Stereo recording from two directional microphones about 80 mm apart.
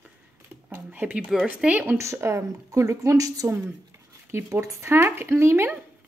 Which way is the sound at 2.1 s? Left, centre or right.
Right.